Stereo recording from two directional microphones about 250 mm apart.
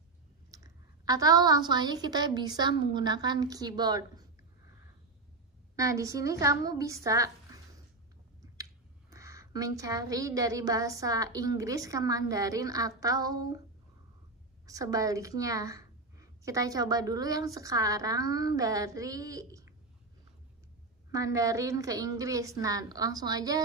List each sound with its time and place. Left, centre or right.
0.5 s a woman's voice: centre
5.8 s a woman's voice: centre
9.1 s a woman's voice: centre
14.7 s a woman's voice: centre
21.1 s a woman's voice: centre